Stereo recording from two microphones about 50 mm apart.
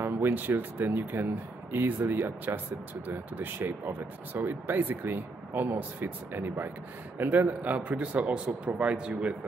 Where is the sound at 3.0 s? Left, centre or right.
Right.